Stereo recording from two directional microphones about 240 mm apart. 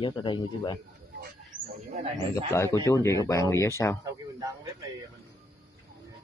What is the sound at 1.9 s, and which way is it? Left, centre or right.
Speech, right.